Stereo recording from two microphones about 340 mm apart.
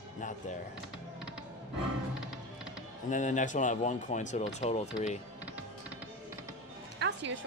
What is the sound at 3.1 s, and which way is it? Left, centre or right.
Speech, left.